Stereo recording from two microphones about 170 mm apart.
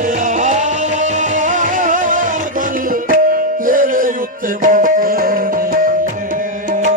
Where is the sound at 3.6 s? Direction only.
55° right (ahead or behind).